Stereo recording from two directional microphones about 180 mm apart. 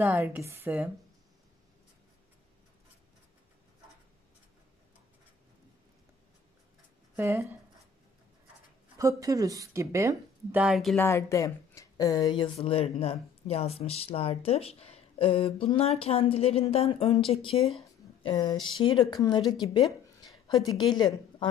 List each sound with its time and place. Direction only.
0.0 s speech: 10° right (ahead or behind)
7.2 s speech: 15° right (ahead or behind)
8.9 s speech: 20° right (ahead or behind)
10.6 s speech: centre (ahead or behind)
11.0 s speech: 15° left (ahead or behind)